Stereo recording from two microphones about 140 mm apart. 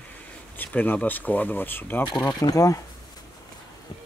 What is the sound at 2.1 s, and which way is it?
Speech, 30° left (ahead or behind).